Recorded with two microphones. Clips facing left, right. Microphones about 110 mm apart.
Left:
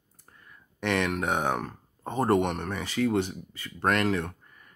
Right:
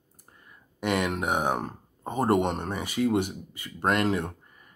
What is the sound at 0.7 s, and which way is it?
Speech, 15° right (ahead or behind).